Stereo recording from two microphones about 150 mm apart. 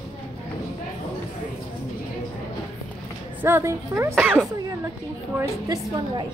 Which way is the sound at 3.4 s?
15° right (ahead or behind).